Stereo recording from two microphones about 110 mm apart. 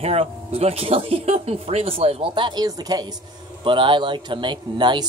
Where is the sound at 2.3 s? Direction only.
45° right (ahead or behind).